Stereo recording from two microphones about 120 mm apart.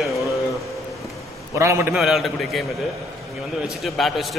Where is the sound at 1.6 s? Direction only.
20° right (ahead or behind).